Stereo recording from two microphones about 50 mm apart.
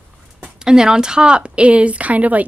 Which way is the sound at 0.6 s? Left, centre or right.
Centre.